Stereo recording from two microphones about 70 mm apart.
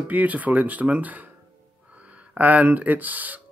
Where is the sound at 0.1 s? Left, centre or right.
Right.